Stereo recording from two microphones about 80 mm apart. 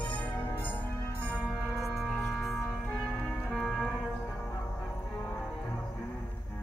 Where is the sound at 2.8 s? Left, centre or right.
Centre.